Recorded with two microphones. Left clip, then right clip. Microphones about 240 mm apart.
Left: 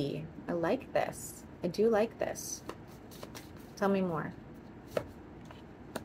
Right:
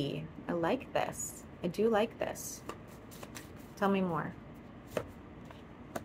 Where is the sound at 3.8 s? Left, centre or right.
Centre.